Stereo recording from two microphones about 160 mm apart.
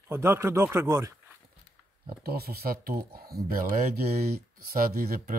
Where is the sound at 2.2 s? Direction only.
75° right (ahead or behind).